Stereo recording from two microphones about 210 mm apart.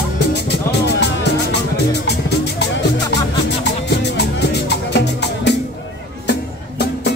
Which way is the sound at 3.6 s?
55° left (ahead or behind).